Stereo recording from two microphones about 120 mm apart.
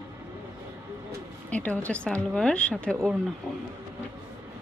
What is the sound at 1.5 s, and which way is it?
Speech, 10° left (ahead or behind).